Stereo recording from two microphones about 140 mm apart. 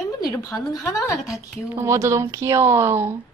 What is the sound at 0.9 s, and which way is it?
Speech, 25° left (ahead or behind).